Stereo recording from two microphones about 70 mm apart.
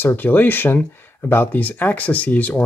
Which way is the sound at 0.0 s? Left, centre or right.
Left.